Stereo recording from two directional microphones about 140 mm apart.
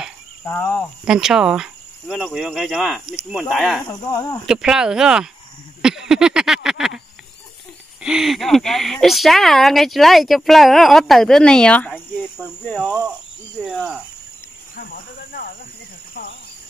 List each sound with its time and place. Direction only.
0.5 s speech: 15° left (ahead or behind)
1.0 s speech: 5° right (ahead or behind)
3.8 s speech: 25° left (ahead or behind)
4.5 s speech: 5° right (ahead or behind)
5.8 s a sound: 5° right (ahead or behind)
8.0 s speech: 5° right (ahead or behind)
13.7 s speech: 5° right (ahead or behind)